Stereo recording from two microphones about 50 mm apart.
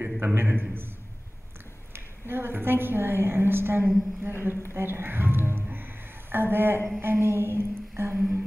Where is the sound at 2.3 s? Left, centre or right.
Right.